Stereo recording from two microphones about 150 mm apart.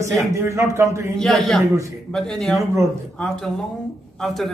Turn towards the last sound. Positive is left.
turn(degrees=0)  # may be behind; listen again after turning